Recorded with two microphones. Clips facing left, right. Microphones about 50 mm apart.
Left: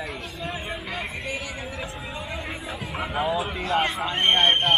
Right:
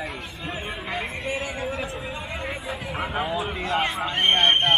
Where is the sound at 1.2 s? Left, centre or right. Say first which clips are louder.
Right 3 dB; right.